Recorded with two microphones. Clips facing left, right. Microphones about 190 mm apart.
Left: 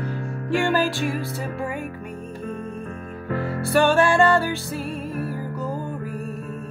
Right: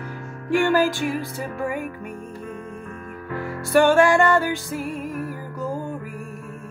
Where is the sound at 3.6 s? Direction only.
15° right (ahead or behind).